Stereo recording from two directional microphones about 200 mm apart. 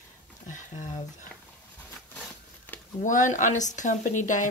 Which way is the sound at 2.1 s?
10° left (ahead or behind).